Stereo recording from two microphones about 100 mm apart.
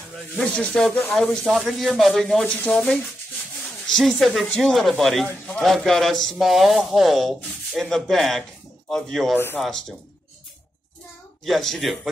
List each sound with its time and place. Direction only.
0.4 s speech: 5° left (ahead or behind)
11.4 s speech: centre (ahead or behind)